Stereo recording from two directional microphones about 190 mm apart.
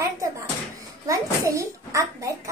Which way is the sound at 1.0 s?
15° right (ahead or behind).